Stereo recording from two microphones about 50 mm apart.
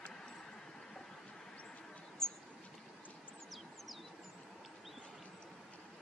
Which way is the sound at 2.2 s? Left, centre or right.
Centre.